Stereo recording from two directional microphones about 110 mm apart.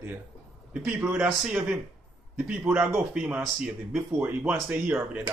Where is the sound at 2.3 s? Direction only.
10° right (ahead or behind).